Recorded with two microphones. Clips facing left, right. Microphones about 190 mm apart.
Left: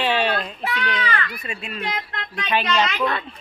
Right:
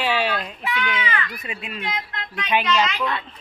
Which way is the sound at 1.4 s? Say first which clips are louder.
Left 1 dB; 15° right (ahead or behind).